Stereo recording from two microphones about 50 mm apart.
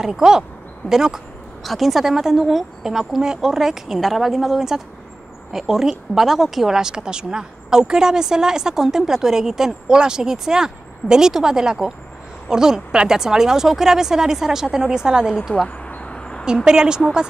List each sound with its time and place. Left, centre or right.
0.0 s speech: centre
15.8 s a sound: left
16.6 s speech: centre